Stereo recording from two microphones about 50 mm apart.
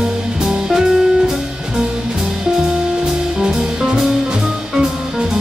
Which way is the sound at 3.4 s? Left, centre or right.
Centre.